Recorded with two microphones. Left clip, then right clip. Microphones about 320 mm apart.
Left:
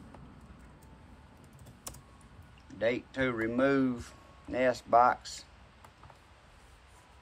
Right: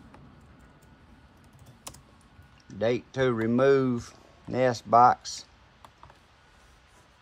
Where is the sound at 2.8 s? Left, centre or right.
Centre.